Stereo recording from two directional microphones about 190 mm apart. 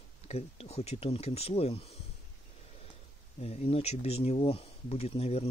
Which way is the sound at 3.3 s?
30° left (ahead or behind).